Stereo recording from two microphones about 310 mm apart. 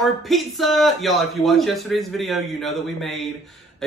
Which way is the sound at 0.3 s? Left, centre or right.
Centre.